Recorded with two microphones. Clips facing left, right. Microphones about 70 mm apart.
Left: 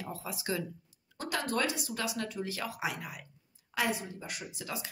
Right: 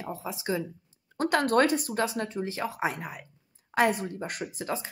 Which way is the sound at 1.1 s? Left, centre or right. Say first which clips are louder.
Right 10 dB; right.